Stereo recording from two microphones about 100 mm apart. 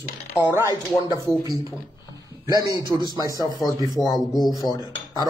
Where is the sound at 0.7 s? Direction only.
35° right (ahead or behind).